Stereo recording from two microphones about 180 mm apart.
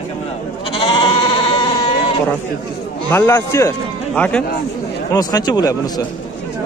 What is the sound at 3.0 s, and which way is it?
A man's voice, 15° left (ahead or behind).